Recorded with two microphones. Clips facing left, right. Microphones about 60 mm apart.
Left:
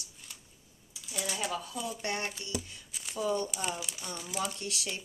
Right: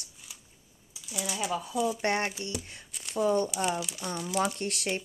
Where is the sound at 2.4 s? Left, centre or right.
Right.